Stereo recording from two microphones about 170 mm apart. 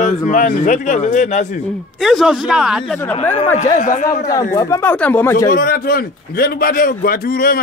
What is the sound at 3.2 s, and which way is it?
Speech, 40° left (ahead or behind).